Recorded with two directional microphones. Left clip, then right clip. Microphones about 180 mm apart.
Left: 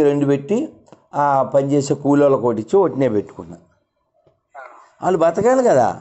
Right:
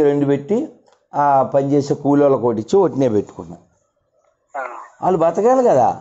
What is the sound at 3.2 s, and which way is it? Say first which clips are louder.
Speech: right 1 dB; 5° right (ahead or behind).